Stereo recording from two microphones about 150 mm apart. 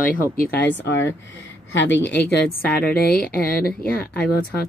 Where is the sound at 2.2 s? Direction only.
90° left.